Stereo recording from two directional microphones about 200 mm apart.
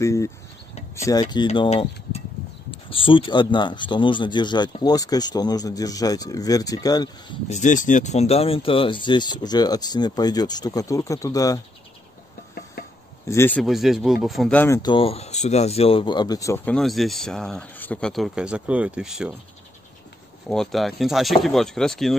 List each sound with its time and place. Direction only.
0.0 s speech: 15° left (ahead or behind)
1.5 s speech: 30° left (ahead or behind)
7.4 s speech: 35° left (ahead or behind); by 11.6 s 15° left (ahead or behind)
13.3 s speech: 10° left (ahead or behind)
13.7 s speech: centre (ahead or behind)
20.4 s speech: centre (ahead or behind)